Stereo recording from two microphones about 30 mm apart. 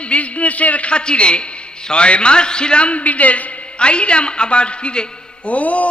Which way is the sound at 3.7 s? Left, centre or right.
Left.